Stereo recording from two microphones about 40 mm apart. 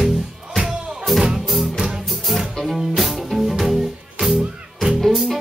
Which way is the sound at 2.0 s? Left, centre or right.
Centre.